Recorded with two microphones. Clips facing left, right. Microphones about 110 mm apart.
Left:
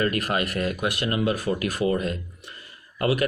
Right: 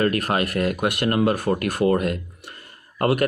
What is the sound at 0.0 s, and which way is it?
Speech, 50° right (ahead or behind).